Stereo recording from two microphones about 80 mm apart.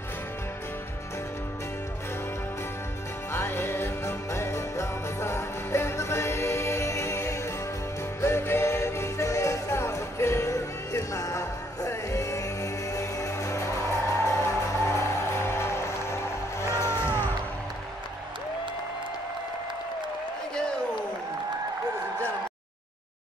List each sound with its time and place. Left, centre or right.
3.3 s music: left